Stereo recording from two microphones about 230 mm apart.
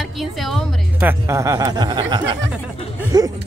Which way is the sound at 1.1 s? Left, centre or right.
Centre.